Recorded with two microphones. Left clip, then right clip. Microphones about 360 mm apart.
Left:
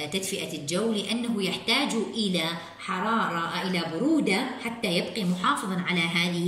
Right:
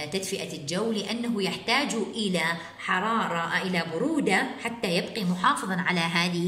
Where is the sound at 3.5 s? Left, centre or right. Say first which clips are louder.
Right 2 dB; centre.